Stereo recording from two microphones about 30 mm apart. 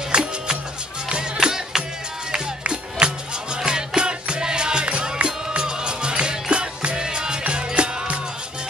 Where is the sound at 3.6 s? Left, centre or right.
Right.